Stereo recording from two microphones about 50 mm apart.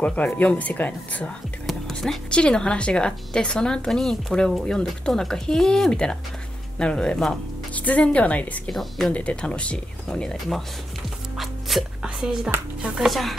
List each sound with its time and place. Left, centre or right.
0.0 s speech: left
2.0 s a woman's voice: centre
7.7 s speech: left
8.6 s speech: centre
9.1 s speech: left
12.0 s a sound: centre
12.9 s speech: centre